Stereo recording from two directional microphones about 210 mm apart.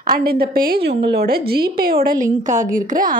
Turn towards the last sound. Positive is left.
turn(degrees=-40)  # may be behind; listen again after turning